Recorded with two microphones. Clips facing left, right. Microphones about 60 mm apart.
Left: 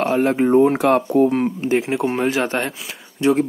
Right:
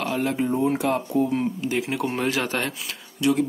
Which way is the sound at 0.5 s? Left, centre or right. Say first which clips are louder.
Left 10 dB; left.